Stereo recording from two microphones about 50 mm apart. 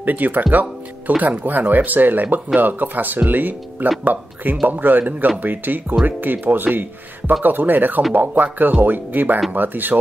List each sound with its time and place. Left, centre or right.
0.0 s speech: right